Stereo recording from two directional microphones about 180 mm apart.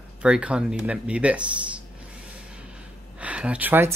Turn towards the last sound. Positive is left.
turn(degrees=-10)  # may be behind; listen again after turning